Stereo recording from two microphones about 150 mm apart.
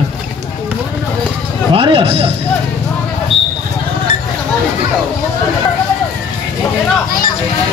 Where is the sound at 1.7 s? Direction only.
35° right (ahead or behind).